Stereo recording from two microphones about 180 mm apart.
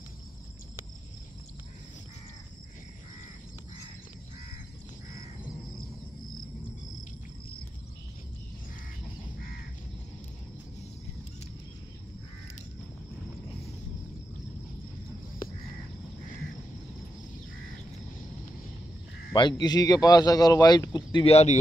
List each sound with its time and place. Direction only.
19.3 s a man's voice: 25° left (ahead or behind)